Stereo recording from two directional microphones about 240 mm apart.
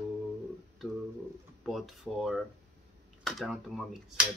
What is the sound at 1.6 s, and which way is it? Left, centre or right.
Speech, centre.